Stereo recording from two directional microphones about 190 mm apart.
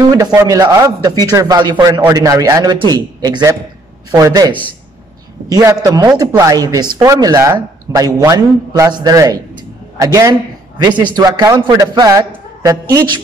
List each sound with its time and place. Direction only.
0.1 s a man's voice: 20° right (ahead or behind)